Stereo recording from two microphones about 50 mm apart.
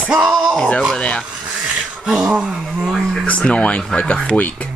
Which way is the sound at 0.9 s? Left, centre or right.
Left.